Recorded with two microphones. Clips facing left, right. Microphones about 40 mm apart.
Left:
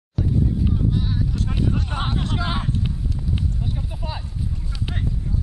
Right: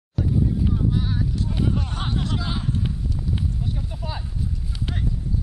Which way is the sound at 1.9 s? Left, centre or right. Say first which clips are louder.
Left 1 dB; centre.